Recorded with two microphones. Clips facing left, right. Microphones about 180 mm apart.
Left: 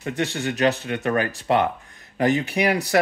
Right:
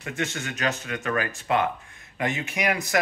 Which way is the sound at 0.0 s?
35° left (ahead or behind).